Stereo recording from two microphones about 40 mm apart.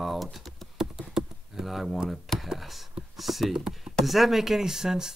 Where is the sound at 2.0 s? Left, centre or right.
Centre.